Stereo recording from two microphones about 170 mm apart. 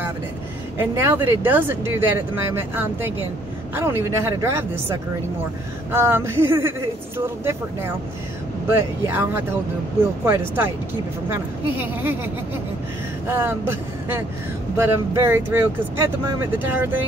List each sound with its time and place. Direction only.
0.7 s speech: 15° right (ahead or behind)
5.9 s speech: 15° right (ahead or behind)
13.3 s speech: 15° right (ahead or behind)